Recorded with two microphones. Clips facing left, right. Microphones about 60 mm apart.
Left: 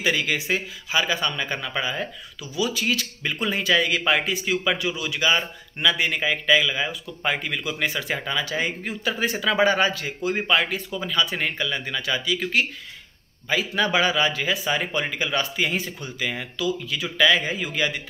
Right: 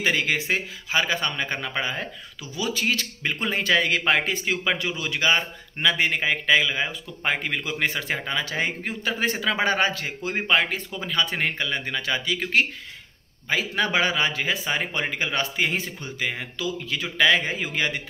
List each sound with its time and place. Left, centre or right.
0.0 s speech: right